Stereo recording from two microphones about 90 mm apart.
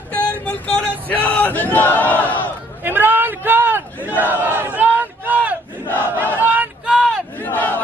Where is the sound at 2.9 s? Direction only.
25° right (ahead or behind).